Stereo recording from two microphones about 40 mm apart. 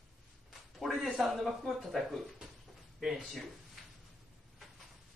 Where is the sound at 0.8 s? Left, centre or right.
Centre.